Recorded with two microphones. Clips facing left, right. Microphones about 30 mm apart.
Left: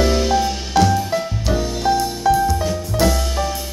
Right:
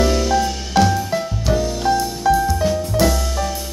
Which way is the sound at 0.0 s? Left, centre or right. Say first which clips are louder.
Even; centre.